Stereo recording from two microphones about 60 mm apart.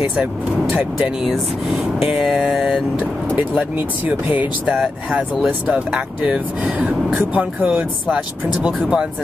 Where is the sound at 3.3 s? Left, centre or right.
Right.